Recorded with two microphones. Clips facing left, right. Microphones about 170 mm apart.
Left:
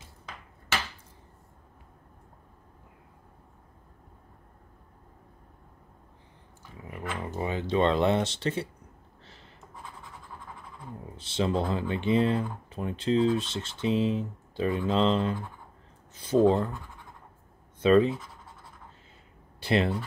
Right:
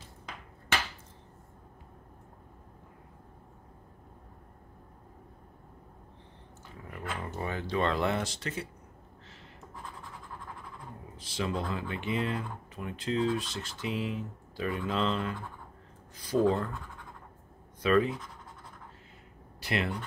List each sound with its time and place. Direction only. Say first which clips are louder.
6.9 s speech: left 3 dB; 15° left (ahead or behind); by 8.6 s 30° left (ahead or behind)
11.1 s speech: left 6 dB; 25° left (ahead or behind)
17.8 s speech: left 5 dB; 25° left (ahead or behind)
19.6 s speech: left 7 dB; 30° left (ahead or behind)